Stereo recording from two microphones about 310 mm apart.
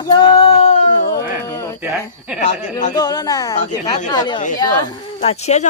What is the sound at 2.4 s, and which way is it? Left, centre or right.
Speech, left.